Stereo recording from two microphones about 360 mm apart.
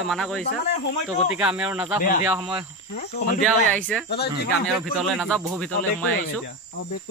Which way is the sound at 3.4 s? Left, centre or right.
Centre.